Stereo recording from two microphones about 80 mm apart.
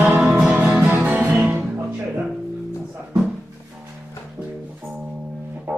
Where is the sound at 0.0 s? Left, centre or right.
Right.